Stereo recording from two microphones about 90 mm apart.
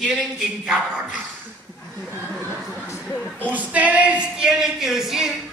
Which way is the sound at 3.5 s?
15° right (ahead or behind).